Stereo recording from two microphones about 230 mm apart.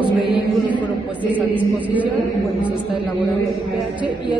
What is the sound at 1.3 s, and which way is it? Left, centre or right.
Speech, centre.